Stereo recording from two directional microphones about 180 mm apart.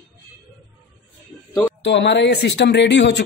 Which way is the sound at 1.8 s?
75° left (ahead or behind).